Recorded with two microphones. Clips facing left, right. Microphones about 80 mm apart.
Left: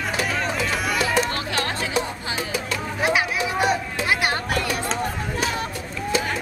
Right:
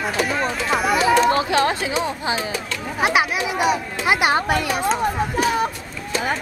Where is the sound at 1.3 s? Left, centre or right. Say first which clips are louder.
Right 8 dB; centre.